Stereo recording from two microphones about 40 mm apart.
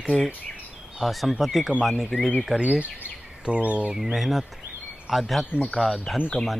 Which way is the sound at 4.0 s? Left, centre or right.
Centre.